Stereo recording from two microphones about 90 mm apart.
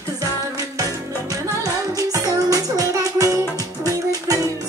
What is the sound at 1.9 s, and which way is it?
Music, 40° right (ahead or behind).